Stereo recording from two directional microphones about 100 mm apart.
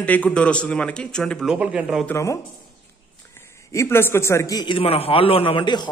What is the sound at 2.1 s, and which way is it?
Speech, 30° left (ahead or behind).